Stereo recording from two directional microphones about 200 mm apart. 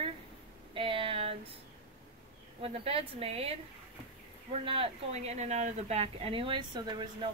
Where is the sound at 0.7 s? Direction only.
25° right (ahead or behind).